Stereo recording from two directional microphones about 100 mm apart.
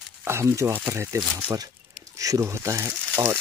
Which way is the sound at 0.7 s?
15° right (ahead or behind).